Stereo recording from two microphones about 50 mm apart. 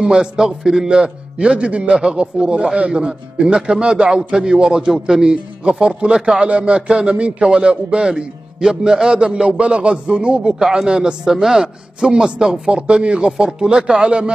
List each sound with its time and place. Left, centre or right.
0.0 s a man's voice: centre
10.6 s a man's voice: centre